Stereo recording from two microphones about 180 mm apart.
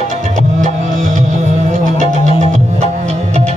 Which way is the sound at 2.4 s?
40° right (ahead or behind).